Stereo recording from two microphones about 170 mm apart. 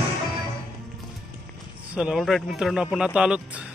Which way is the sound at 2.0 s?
Centre (ahead or behind).